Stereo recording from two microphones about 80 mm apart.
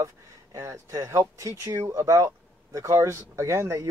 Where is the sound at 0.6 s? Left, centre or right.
Right.